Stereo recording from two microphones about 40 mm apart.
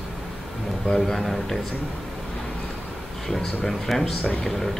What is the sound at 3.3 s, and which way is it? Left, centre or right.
Speech, centre.